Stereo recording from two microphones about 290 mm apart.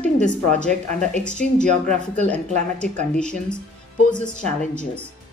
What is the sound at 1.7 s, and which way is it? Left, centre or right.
Speech, right.